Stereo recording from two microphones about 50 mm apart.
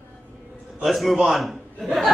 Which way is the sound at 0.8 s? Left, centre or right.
Centre.